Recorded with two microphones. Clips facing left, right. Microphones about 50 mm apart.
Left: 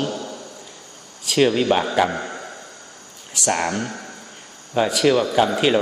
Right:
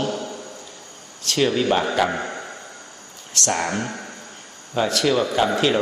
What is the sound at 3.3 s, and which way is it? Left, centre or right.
Speech, centre.